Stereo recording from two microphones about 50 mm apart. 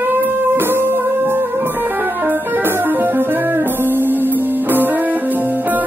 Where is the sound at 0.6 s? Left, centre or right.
Right.